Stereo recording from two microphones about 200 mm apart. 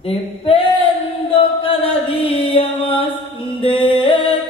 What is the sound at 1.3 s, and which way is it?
Music, 25° left (ahead or behind).